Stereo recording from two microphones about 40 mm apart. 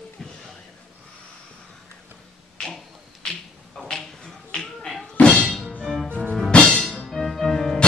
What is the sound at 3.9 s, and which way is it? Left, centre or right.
Finger snapping, centre.